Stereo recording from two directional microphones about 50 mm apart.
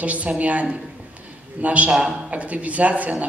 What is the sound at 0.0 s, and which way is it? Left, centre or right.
A man's voice, right.